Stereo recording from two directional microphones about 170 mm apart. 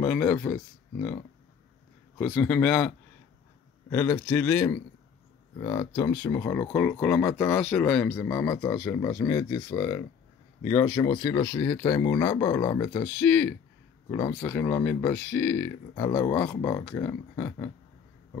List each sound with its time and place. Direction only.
0.0 s speech: 10° left (ahead or behind)
2.1 s speech: 10° left (ahead or behind)
3.9 s speech: 15° left (ahead or behind)